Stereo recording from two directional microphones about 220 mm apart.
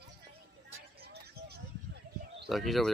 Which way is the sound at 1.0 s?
45° right (ahead or behind).